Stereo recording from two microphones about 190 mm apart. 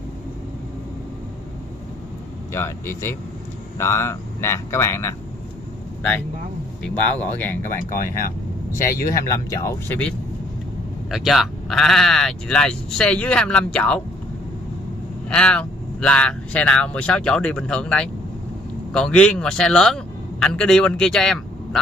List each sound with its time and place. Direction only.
2.5 s speech: 15° left (ahead or behind)
6.8 s speech: 10° left (ahead or behind)
7.9 s speech: 50° left (ahead or behind)
8.8 s speech: 15° left (ahead or behind)
15.2 s speech: 5° left (ahead or behind)